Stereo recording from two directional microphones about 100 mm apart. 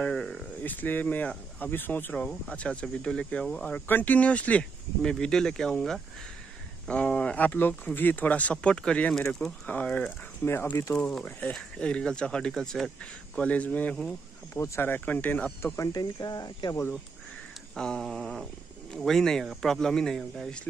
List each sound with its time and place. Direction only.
0.0 s a sound: 5° left (ahead or behind)
0.7 s speech: 20° left (ahead or behind)
3.8 s speech: 15° left (ahead or behind)
11.2 s speech: 15° left (ahead or behind)
14.5 s speech: 20° left (ahead or behind)
15.6 s speech: 30° left (ahead or behind)
15.9 s speech: 40° left (ahead or behind)
17.7 s speech: 5° left (ahead or behind)